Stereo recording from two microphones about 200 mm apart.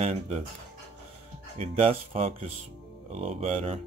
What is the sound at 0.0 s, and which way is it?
Speech, 35° right (ahead or behind).